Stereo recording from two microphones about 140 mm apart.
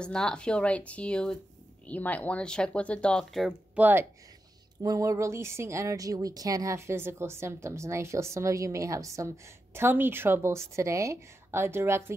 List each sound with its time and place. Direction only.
0.0 s speech: 5° left (ahead or behind)
3.7 s a woman's voice: 15° right (ahead or behind)